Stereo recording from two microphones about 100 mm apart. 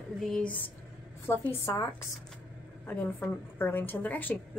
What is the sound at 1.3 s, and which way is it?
Speech, 25° left (ahead or behind).